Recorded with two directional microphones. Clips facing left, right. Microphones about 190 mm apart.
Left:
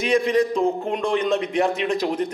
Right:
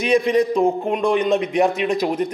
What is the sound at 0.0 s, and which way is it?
Speech, 15° right (ahead or behind).